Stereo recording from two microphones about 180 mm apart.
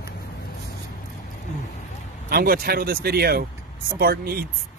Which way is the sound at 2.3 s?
55° right (ahead or behind).